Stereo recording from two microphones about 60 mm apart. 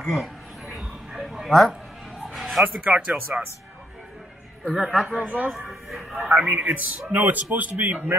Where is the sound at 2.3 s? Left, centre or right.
Centre.